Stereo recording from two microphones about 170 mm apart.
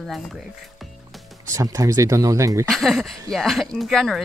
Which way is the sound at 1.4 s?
20° right (ahead or behind).